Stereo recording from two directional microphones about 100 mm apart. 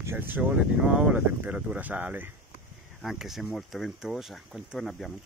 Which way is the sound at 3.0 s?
5° right (ahead or behind).